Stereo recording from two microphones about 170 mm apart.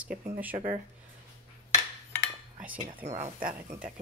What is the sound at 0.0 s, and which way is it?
Speech, 10° right (ahead or behind).